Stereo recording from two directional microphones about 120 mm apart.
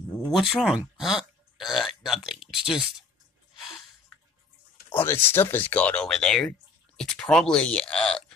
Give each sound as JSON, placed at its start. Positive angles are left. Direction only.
{"t": 0.3, "sound": "speech", "side_deg": 0}
{"t": 4.8, "sound": "speech", "side_deg": 20}